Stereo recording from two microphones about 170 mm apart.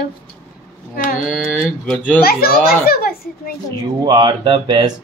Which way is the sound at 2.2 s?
60° left (ahead or behind).